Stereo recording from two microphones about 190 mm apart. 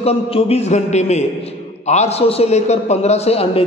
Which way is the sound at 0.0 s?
30° left (ahead or behind).